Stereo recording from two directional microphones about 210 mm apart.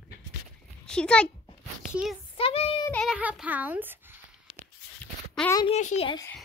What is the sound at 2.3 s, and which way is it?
Speech, 25° left (ahead or behind).